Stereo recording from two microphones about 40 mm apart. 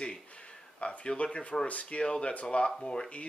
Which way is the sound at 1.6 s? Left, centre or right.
Left.